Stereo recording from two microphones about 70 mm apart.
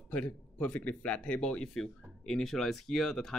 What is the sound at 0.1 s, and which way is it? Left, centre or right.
Speech, centre.